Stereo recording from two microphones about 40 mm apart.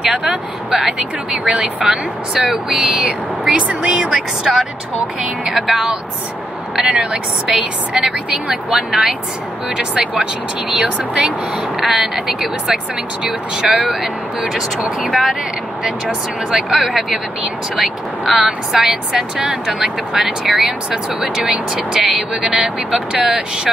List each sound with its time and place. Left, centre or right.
0.1 s speech: right
0.7 s speech: centre; by 3.9 s right
4.1 s speech: centre
5.7 s speech: centre
6.7 s vehicle: centre
7.4 s speech: centre
10.7 s speech: centre
16.5 s speech: centre